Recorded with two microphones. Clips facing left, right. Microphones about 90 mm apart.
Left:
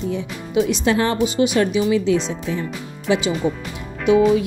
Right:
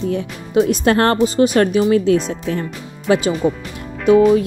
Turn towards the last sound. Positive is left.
turn(degrees=-40)  # may be behind; listen again after turning